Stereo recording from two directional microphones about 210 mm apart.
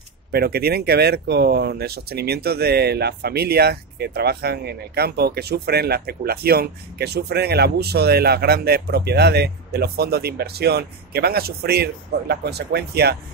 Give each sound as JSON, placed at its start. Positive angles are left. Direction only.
{"t": 0.3, "sound": "speech", "side_deg": -50}